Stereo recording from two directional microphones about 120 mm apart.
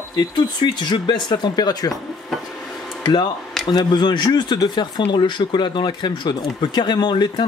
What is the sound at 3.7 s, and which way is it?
Speech, 35° left (ahead or behind).